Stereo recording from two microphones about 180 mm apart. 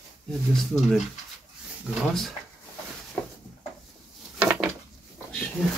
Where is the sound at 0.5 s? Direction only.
Centre (ahead or behind).